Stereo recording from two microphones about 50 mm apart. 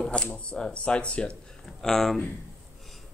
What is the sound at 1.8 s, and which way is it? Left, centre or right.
Speech, centre.